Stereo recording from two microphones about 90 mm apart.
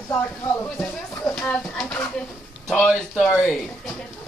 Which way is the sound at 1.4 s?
10° left (ahead or behind).